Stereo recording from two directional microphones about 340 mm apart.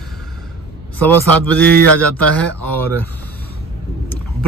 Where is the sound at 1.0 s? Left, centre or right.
Centre.